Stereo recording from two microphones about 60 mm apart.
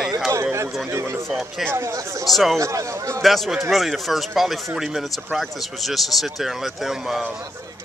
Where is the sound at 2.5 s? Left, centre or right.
Right.